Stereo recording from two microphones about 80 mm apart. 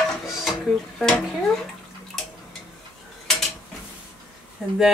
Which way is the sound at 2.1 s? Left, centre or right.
Centre.